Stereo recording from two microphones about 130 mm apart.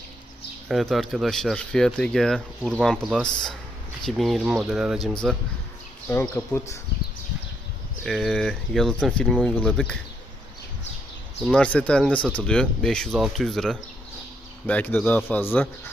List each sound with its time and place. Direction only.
0.7 s speech: centre (ahead or behind)
6.0 s speech: 15° left (ahead or behind)
8.0 s speech: 5° left (ahead or behind)
11.4 s speech: 10° left (ahead or behind)